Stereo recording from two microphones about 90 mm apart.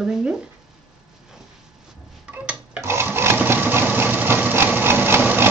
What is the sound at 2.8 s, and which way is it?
Sewing machine, 30° right (ahead or behind).